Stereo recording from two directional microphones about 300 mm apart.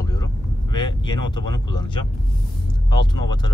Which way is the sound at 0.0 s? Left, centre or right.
Centre.